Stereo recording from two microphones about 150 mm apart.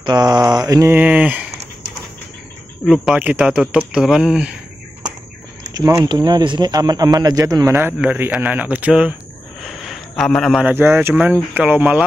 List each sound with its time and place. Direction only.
0.0 s speech: 30° right (ahead or behind); by 1.4 s 10° right (ahead or behind)
2.8 s speech: centre (ahead or behind)
5.7 s speech: 25° right (ahead or behind)
8.0 s speech: 5° right (ahead or behind)
9.6 s a sound: centre (ahead or behind)
10.6 s speech: 15° right (ahead or behind)